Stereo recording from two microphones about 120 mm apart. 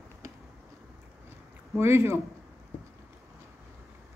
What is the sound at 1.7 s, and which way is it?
Speech, 20° right (ahead or behind).